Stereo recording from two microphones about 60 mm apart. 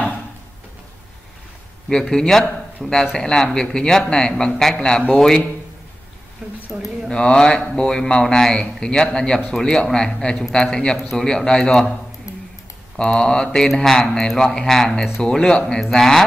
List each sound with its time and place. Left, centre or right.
1.9 s a man's voice: centre
6.4 s speech: centre
7.1 s speech: centre
12.3 s a sound: left
12.9 s speech: centre